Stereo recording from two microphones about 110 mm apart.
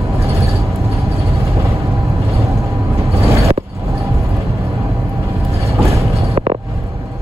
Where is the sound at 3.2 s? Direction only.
25° right (ahead or behind).